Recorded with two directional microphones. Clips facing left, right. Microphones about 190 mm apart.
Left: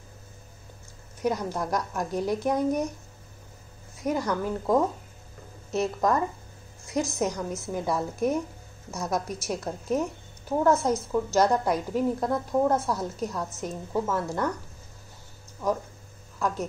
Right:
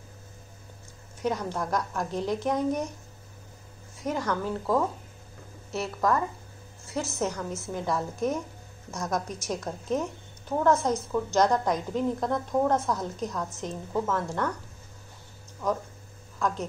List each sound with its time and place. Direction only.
1.2 s a woman's voice: 10° left (ahead or behind)
4.0 s a woman's voice: 10° left (ahead or behind)
16.3 s speech: 10° left (ahead or behind)